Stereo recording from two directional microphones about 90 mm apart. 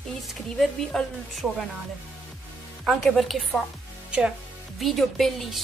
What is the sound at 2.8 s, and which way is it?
Speech, 5° right (ahead or behind).